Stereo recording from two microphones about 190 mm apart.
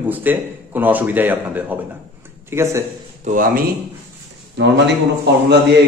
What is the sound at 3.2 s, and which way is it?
Speech, 45° right (ahead or behind).